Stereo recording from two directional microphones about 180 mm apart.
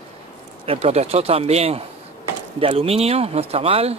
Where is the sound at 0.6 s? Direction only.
35° right (ahead or behind).